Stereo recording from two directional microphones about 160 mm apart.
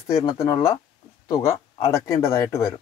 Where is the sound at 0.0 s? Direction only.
20° left (ahead or behind).